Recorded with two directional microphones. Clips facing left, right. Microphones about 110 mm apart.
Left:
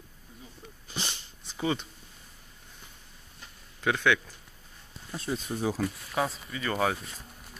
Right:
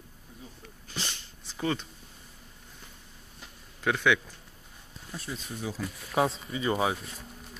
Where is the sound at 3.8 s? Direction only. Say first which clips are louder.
Even; centre (ahead or behind).